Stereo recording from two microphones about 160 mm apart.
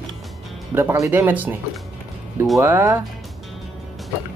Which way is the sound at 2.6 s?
15° right (ahead or behind).